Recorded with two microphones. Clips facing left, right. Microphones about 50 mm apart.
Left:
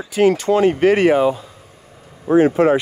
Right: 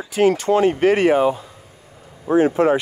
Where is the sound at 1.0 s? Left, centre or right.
Left.